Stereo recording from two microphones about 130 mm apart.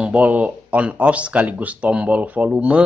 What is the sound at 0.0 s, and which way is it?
Speech, 10° right (ahead or behind).